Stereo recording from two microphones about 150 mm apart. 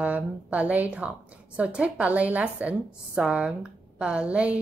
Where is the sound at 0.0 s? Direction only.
10° right (ahead or behind).